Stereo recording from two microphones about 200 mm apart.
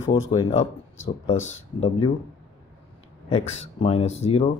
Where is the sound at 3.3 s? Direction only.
30° left (ahead or behind).